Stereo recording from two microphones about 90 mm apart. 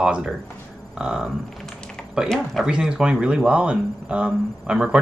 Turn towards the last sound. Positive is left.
turn(degrees=-10)  # may be behind; listen again after turning